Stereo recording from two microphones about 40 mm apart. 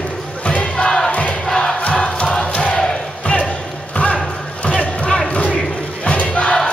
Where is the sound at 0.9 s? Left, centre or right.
Centre.